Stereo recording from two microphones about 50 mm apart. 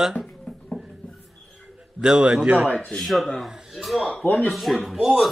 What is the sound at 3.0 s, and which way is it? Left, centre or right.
Speech, centre.